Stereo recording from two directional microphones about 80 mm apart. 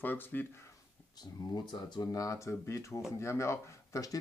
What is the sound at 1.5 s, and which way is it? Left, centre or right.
Speech, left.